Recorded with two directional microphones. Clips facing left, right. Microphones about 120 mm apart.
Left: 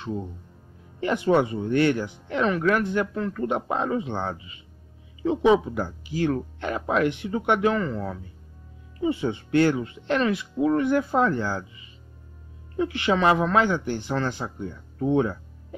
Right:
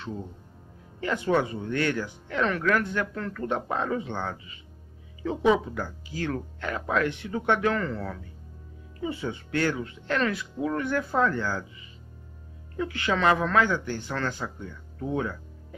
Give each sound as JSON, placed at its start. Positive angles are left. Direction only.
{"t": 1.0, "sound": "speech", "side_deg": 20}
{"t": 12.7, "sound": "speech", "side_deg": 25}